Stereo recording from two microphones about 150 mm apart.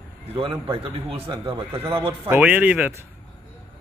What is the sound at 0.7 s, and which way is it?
Speech, 35° right (ahead or behind).